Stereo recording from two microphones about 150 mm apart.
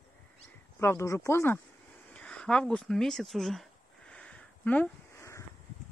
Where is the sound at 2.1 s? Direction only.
5° left (ahead or behind).